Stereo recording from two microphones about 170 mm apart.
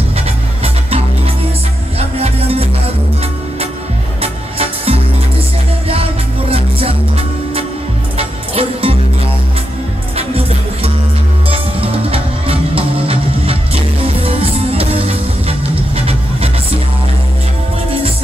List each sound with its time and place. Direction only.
0.8 s music: 35° right (ahead or behind)
4.2 s music: 35° right (ahead or behind)
6.5 s music: 35° right (ahead or behind)
10.1 s music: 35° right (ahead or behind)